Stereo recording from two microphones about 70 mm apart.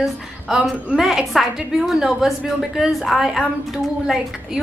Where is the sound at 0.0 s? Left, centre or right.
Centre.